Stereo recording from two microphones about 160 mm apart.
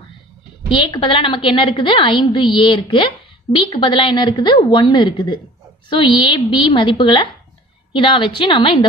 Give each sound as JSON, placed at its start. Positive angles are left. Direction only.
{"t": 0.7, "sound": "a woman's voice", "side_deg": 30}